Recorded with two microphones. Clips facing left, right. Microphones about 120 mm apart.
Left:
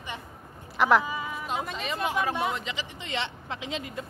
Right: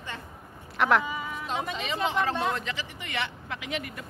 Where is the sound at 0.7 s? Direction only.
5° left (ahead or behind).